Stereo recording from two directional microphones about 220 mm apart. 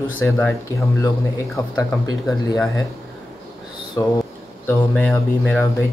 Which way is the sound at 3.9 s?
15° left (ahead or behind).